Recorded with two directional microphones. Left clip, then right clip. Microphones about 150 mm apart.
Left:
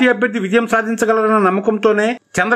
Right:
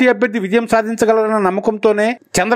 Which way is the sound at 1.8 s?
35° right (ahead or behind).